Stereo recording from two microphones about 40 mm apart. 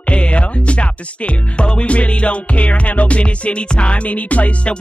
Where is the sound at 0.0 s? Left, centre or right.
Left.